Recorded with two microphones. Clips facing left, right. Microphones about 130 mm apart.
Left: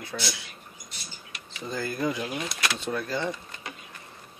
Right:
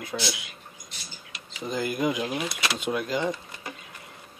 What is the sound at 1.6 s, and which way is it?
Speech, 15° right (ahead or behind).